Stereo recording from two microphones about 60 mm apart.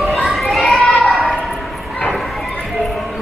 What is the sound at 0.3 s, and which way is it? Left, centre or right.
Children playing, centre.